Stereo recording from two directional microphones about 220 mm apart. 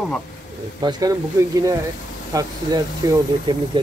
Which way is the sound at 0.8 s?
20° right (ahead or behind).